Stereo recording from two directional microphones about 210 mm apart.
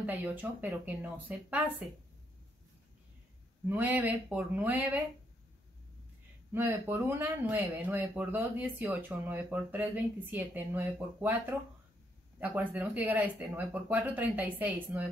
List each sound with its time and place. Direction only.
0.0 s speech: 10° right (ahead or behind)
3.6 s speech: 10° right (ahead or behind)
6.5 s speech: 10° right (ahead or behind)